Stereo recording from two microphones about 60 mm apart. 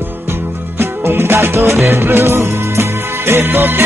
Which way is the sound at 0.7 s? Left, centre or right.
Right.